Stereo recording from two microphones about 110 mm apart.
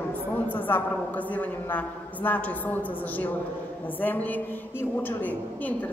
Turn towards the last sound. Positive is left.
turn(degrees=15)  # may be behind; listen again after turning